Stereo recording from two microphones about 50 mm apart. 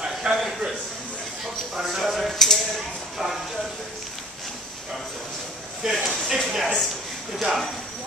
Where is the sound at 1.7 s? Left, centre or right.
Centre.